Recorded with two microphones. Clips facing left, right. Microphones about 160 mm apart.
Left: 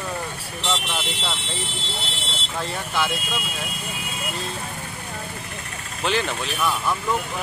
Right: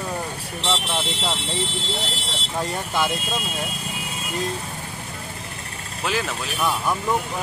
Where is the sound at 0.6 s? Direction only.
30° right (ahead or behind).